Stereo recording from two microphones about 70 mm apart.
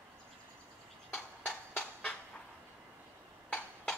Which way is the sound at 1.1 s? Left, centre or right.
Centre.